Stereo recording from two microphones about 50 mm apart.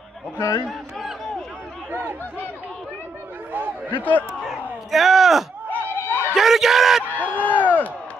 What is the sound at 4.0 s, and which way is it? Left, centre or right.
Speech, left.